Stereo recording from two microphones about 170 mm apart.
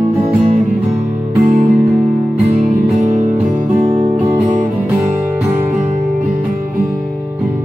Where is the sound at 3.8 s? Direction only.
40° right (ahead or behind).